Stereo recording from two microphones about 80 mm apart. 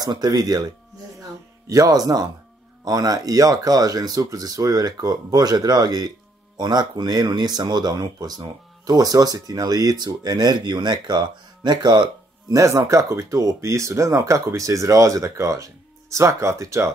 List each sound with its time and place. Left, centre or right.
0.0 s speech: right
1.7 s speech: right
12.5 s speech: right